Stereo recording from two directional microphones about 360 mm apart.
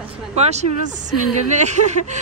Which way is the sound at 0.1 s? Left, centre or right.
Centre.